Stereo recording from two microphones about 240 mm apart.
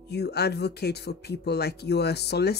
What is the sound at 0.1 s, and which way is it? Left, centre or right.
Speech, left.